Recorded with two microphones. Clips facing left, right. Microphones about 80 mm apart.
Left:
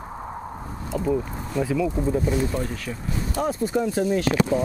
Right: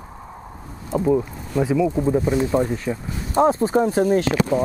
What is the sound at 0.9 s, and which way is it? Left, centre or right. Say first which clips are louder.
Speech: right 5 dB; centre.